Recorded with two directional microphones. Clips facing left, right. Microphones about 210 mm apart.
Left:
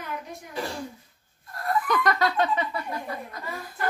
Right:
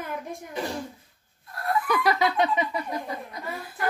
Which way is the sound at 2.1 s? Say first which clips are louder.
Right 1 dB; 15° right (ahead or behind).